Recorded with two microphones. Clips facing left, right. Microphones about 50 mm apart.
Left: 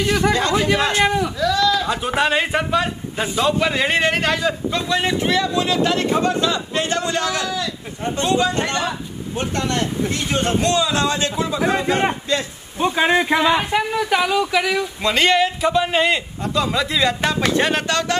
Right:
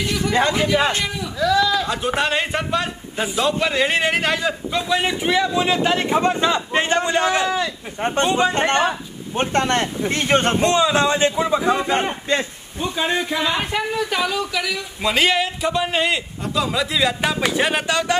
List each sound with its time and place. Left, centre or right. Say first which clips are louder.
0.3 s speech: even; right
0.9 s a man's voice: left 8 dB; left
1.4 s sheep: right 3 dB; centre
1.9 s speech: left 2 dB; centre; by 10.6 s right
10.6 s speech: right 2 dB; right
12.7 s a man's voice: left 5 dB; left
13.4 s speech: left 4 dB; centre
15.0 s a man's voice: left 1 dB; centre